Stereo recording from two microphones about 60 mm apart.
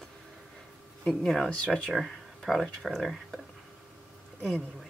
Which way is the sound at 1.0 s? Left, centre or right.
Centre.